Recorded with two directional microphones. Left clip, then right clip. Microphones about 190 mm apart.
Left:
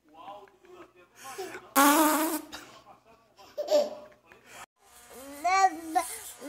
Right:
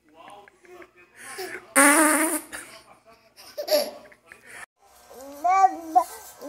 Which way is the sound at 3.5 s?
5° left (ahead or behind).